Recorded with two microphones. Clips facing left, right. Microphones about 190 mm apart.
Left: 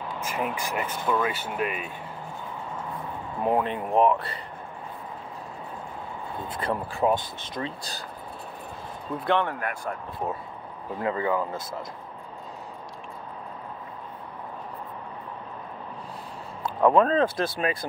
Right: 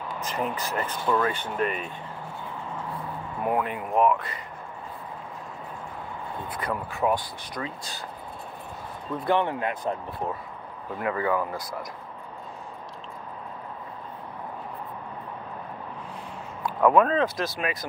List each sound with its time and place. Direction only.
0.2 s speech: 10° left (ahead or behind)
3.4 s speech: 25° left (ahead or behind)
6.5 s speech: 30° left (ahead or behind)
9.4 s speech: 20° right (ahead or behind)
11.0 s speech: 25° left (ahead or behind)
16.6 s speech: 30° left (ahead or behind)